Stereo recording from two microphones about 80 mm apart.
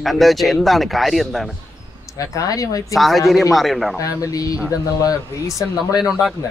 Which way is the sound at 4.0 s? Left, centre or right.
Left.